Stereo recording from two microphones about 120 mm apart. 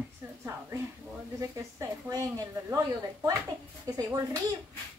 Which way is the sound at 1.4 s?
25° right (ahead or behind).